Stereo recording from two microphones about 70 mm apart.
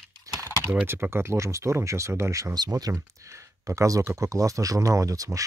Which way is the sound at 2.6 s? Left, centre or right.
Right.